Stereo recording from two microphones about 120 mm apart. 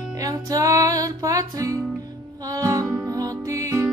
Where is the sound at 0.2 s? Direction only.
30° right (ahead or behind).